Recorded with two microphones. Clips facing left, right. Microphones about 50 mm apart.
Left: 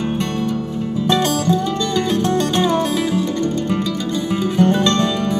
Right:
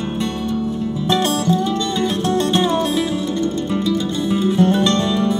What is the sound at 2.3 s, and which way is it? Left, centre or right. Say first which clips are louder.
Music: even; left.